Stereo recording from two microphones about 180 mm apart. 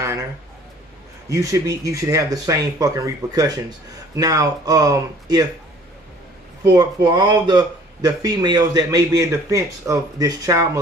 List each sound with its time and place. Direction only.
0.0 s a sound: 15° right (ahead or behind)
1.3 s speech: 15° right (ahead or behind)
6.6 s speech: 20° right (ahead or behind)